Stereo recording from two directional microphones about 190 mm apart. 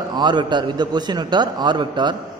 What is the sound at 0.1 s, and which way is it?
A man's voice, 25° right (ahead or behind).